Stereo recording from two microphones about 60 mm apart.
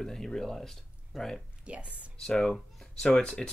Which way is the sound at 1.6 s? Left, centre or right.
Right.